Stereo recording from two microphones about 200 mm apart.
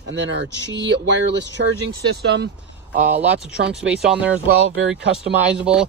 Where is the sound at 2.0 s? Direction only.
60° right (ahead or behind).